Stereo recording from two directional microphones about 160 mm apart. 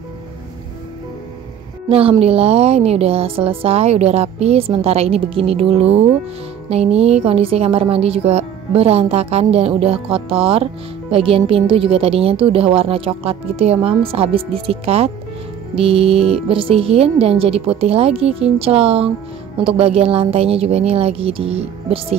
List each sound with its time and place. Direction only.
1.9 s a woman's voice: 35° right (ahead or behind)